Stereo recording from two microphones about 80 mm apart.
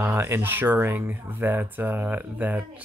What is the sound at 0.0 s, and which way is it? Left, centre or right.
Speech, right.